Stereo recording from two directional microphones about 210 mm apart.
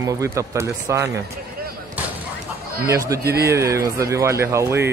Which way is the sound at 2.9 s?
15° right (ahead or behind).